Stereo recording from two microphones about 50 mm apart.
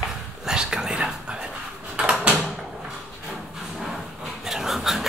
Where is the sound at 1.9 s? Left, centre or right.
Centre.